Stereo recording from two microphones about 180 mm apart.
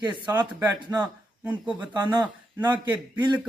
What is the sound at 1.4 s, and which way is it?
Speech, 10° right (ahead or behind).